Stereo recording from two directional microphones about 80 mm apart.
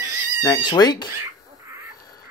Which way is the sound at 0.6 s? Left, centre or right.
Left.